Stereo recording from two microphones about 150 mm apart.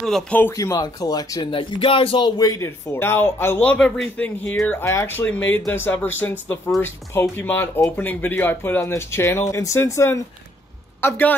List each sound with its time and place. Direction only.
0.0 s speech: 5° left (ahead or behind)
0.4 s a man's voice: 20° left (ahead or behind)